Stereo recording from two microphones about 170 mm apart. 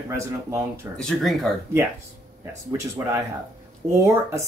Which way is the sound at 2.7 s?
15° right (ahead or behind).